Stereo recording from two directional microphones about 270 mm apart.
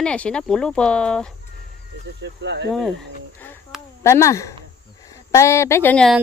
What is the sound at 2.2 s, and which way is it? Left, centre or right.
Speech, right.